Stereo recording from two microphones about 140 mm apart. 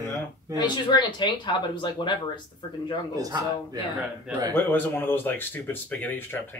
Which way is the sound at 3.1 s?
25° right (ahead or behind).